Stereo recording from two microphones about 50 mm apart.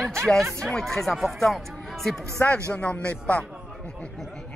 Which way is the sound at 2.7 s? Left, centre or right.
Left.